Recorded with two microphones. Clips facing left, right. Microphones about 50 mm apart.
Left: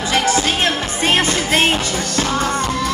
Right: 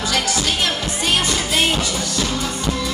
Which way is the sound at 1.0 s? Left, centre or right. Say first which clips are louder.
Left 4 dB; left.